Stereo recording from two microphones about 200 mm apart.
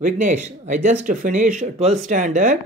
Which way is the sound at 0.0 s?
35° right (ahead or behind).